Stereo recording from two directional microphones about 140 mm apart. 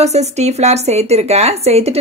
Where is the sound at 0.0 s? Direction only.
50° right (ahead or behind).